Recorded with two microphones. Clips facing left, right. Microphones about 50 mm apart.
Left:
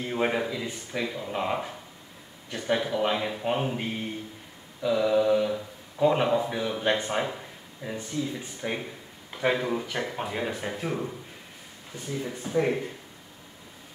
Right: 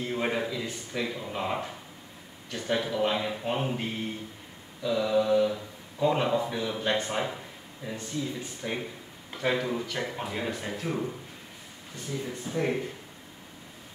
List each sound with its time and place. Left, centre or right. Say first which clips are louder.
0.0 s a man's voice: left 2 dB; centre
4.8 s mantra: left 3 dB; centre
6.2 s a man's voice: left 2 dB; centre
11.9 s speech: left 2 dB; left
12.3 s a man's voice: left 4 dB; centre